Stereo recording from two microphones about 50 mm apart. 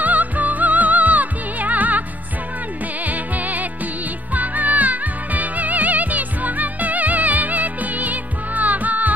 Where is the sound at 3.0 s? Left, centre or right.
Right.